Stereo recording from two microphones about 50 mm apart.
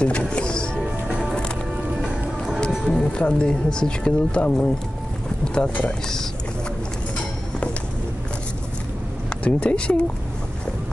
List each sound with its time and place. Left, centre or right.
0.2 s music: centre
2.0 s music: centre
2.8 s speech: centre
9.3 s speech: left